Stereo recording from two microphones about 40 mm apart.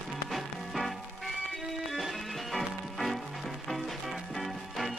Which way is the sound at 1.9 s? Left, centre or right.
Centre.